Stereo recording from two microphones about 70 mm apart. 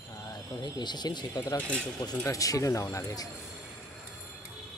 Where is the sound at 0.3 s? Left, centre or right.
Left.